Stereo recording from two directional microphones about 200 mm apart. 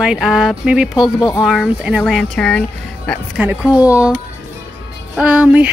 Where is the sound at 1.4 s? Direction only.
Centre (ahead or behind).